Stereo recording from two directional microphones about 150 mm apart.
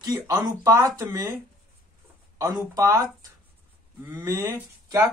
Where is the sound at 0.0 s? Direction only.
25° right (ahead or behind).